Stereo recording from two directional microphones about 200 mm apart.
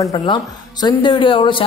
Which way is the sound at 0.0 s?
20° left (ahead or behind).